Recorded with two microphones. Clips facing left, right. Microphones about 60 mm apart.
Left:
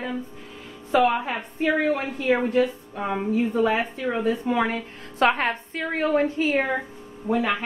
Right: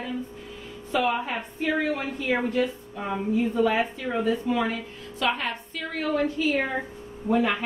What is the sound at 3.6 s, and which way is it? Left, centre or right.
Speech, left.